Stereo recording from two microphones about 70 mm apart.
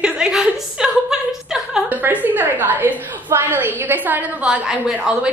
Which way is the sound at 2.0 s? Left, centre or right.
Right.